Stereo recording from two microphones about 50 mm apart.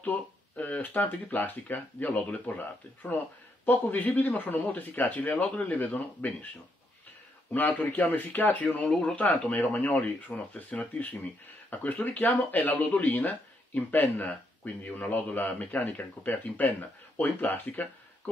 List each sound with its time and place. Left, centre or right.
0.0 s speech: left
7.5 s speech: left